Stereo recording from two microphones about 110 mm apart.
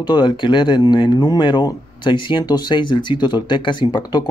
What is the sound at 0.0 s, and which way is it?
Speech, 40° left (ahead or behind).